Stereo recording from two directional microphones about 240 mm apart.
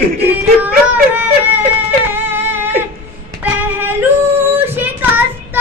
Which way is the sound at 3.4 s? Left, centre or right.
Centre.